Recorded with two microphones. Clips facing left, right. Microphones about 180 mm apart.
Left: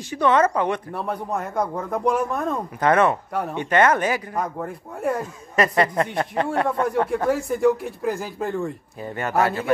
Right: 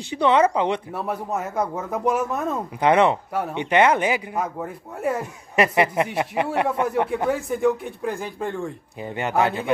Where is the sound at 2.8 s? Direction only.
15° right (ahead or behind).